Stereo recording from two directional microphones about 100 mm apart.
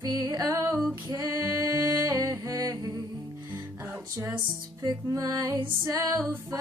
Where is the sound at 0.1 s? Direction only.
40° right (ahead or behind).